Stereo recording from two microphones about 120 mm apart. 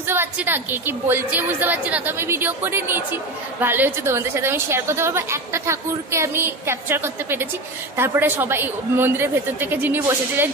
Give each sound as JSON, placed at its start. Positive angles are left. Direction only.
{"t": 0.0, "sound": "a woman's voice", "side_deg": -20}